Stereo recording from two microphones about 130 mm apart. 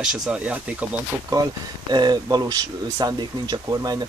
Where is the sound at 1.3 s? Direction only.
30° right (ahead or behind).